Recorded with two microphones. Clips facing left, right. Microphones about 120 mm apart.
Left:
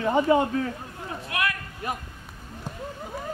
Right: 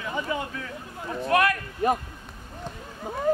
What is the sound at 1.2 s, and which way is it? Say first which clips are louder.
Speech: right 8 dB; 40° right (ahead or behind).